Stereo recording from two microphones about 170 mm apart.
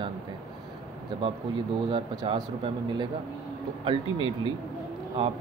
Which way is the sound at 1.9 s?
25° right (ahead or behind).